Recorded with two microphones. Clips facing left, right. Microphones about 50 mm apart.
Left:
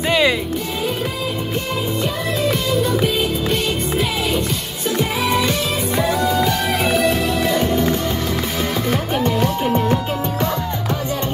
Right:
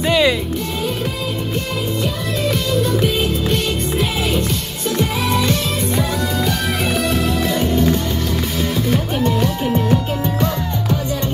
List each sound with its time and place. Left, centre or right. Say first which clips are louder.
0.1 s music: right 1 dB; centre
2.4 s music: right 1 dB; centre
4.9 s music: even; centre